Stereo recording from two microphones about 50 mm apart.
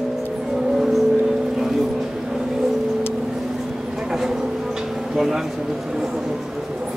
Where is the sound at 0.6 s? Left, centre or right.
Centre.